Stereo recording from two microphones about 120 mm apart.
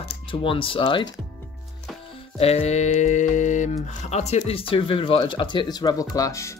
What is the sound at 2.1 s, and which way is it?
Music, 55° left (ahead or behind).